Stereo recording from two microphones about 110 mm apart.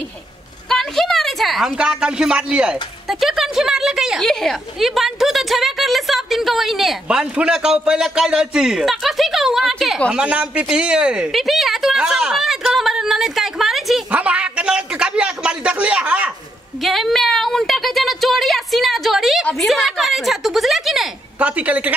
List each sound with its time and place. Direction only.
0.7 s a woman's voice: 5° left (ahead or behind)
10.1 s a woman's voice: 10° right (ahead or behind)
14.1 s a sound: 10° right (ahead or behind)
16.8 s a woman's voice: centre (ahead or behind)
21.4 s a woman's voice: 15° right (ahead or behind)